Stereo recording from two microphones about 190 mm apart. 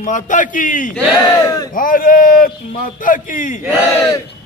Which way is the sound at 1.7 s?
45° left (ahead or behind).